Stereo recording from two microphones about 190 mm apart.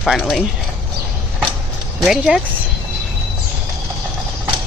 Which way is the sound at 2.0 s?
Centre (ahead or behind).